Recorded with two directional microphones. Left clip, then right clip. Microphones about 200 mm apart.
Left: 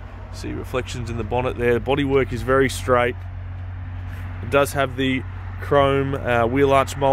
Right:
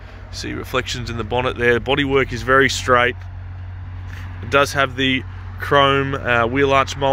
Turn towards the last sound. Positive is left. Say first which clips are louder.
# right 1 dB
turn(degrees=10)  # may be behind; listen again after turning